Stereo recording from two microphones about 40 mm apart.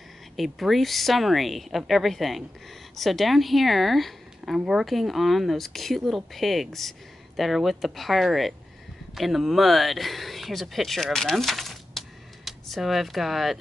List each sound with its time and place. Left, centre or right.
0.4 s speech: centre
11.1 s a sound: centre
12.6 s speech: centre